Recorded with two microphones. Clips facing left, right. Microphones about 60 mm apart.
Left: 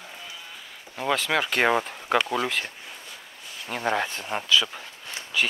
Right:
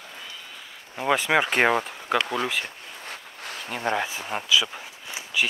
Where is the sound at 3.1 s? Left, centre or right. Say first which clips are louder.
Right 5 dB; right.